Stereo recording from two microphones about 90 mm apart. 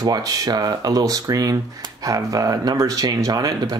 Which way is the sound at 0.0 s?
45° right (ahead or behind).